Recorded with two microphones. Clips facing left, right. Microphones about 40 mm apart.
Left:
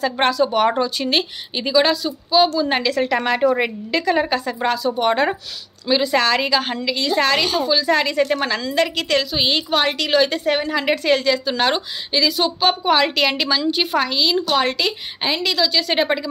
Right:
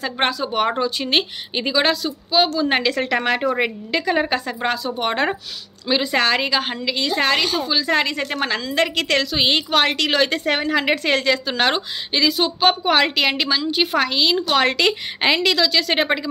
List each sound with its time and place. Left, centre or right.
0.0 s a woman's voice: right
3.4 s a woman's voice: centre
4.6 s a woman's voice: right
9.4 s a woman's voice: right
13.9 s a woman's voice: right
14.6 s a woman's voice: right
15.9 s a woman's voice: right